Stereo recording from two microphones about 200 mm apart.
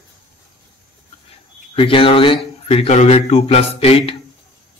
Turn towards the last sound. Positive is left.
turn(degrees=30)  # may be behind; listen again after turning